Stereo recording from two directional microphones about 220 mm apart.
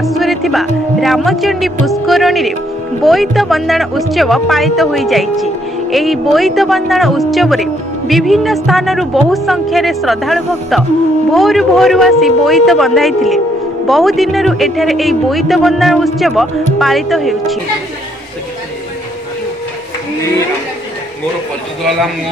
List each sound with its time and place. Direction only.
0.0 s speech: centre (ahead or behind)